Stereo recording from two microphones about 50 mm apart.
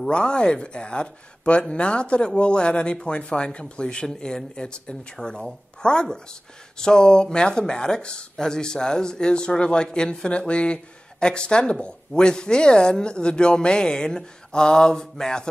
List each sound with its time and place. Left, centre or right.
0.1 s a woman's voice: centre